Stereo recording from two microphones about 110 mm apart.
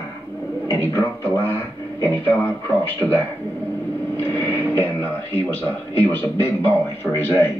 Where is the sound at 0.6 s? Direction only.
25° left (ahead or behind); by 3.2 s 5° left (ahead or behind).